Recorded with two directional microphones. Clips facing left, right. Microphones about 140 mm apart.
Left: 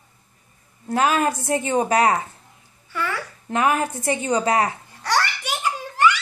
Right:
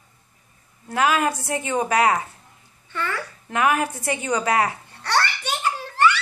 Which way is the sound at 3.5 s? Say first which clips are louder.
Left 1 dB; 30° left (ahead or behind).